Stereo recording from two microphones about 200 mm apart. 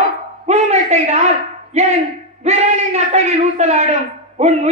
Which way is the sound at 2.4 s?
35° right (ahead or behind).